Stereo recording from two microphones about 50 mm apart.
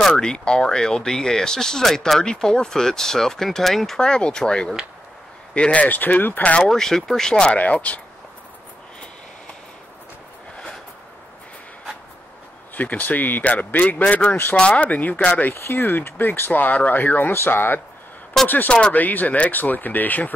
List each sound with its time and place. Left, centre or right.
0.0 s speech: centre
5.5 s speech: left
6.7 s speech: centre
7.5 s speech: left
12.7 s speech: left
15.5 s speech: left
18.9 s speech: left